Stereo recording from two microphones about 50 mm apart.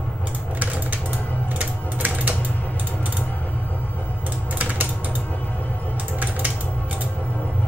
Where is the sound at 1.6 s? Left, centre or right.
Right.